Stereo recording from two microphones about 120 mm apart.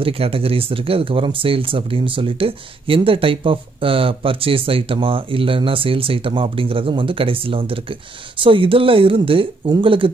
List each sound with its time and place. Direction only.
0.0 s speech: 50° right (ahead or behind)